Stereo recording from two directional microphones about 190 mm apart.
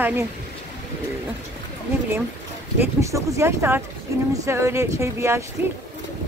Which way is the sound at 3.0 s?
15° right (ahead or behind).